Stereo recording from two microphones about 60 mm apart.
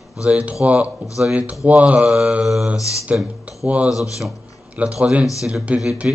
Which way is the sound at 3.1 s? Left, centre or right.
Right.